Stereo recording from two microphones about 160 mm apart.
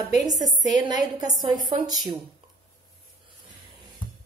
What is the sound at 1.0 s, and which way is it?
Speech, 25° right (ahead or behind).